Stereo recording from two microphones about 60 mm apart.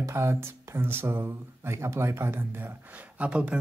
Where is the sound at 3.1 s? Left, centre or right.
Right.